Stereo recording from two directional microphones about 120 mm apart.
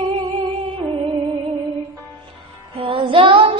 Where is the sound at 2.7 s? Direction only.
45° right (ahead or behind).